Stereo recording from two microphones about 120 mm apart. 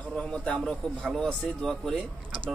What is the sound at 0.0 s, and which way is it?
A man's voice, 5° left (ahead or behind).